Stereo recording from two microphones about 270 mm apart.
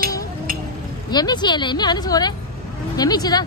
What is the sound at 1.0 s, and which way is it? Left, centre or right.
A woman's voice, centre.